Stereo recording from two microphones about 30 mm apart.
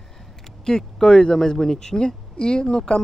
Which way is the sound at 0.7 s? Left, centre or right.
Left.